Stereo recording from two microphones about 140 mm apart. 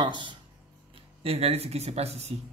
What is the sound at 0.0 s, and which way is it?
Speech, 35° right (ahead or behind).